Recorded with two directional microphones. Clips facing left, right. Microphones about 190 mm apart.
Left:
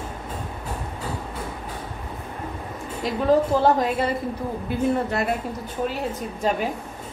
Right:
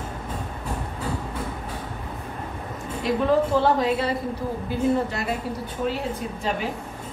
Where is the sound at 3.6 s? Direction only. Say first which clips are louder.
Left 1 dB; 50° left (ahead or behind).